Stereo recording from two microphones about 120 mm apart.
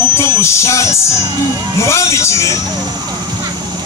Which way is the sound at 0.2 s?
25° left (ahead or behind).